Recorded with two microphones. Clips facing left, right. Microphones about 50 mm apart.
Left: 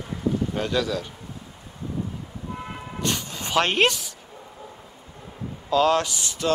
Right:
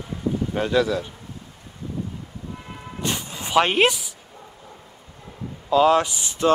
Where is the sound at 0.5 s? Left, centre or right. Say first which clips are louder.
Right 4 dB; centre.